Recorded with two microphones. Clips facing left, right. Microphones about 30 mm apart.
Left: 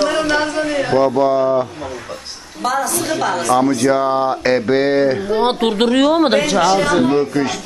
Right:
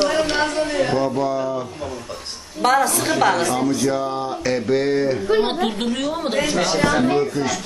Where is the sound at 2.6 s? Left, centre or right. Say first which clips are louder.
Right 1 dB; right.